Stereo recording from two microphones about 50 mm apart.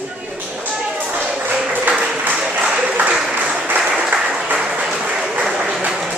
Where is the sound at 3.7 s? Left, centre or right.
Right.